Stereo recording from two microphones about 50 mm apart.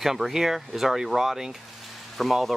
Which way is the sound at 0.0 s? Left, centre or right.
Centre.